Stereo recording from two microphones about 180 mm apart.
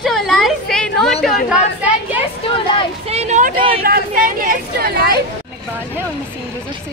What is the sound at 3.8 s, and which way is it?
Speech, 55° right (ahead or behind).